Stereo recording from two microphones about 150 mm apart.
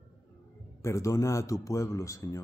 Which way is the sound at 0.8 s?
20° left (ahead or behind).